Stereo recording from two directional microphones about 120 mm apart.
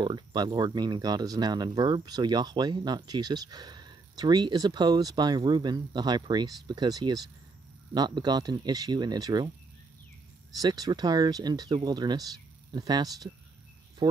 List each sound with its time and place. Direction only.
0.0 s speech: 35° right (ahead or behind)
10.5 s speech: 30° right (ahead or behind)